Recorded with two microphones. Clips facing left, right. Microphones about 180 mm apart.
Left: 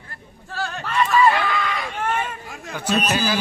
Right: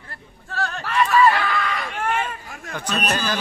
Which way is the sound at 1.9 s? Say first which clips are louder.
Even; 20° left (ahead or behind).